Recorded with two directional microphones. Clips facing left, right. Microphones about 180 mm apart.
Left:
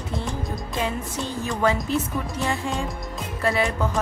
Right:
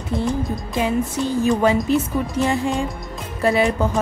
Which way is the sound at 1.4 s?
15° right (ahead or behind).